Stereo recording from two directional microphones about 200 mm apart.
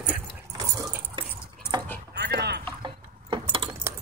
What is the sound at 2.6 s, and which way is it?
Keys jangling, 25° right (ahead or behind).